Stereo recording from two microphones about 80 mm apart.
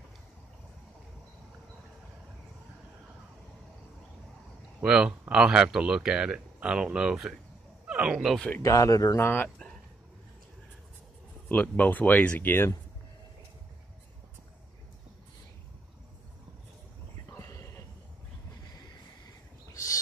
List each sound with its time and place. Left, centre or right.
4.8 s speech: centre
8.6 s speech: left
9.2 s speech: left
11.4 s speech: left
17.3 s a sound: left
19.7 s bird: left